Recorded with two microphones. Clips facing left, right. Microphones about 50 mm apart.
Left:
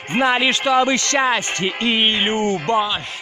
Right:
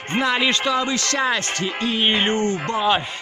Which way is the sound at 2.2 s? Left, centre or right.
Centre.